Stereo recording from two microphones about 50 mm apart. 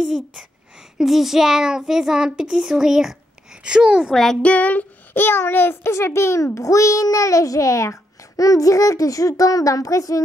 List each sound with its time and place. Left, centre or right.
0.0 s a child's voice: centre
4.1 s child singing: centre
4.4 s a child's voice: left